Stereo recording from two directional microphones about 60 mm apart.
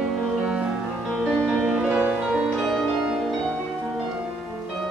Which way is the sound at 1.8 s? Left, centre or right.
Right.